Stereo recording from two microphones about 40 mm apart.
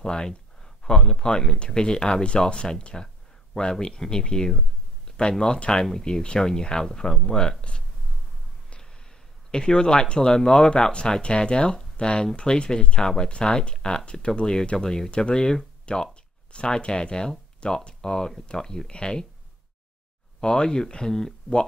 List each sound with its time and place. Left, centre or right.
0.0 s speech: centre
5.0 s a sound: left
5.7 s speech: centre
9.5 s speech: centre
15.0 s speech: left
20.3 s speech: centre